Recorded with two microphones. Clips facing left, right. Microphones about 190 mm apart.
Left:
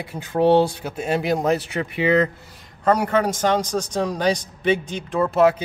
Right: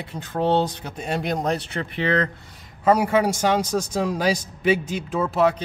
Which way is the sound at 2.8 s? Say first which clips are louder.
Right 1 dB; 10° right (ahead or behind).